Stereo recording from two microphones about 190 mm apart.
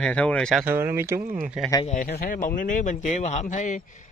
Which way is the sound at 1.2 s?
45° right (ahead or behind).